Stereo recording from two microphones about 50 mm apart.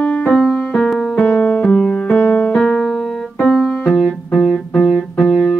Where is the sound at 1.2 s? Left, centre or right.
Left.